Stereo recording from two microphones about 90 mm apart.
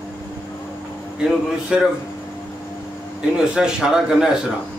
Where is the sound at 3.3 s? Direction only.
5° right (ahead or behind).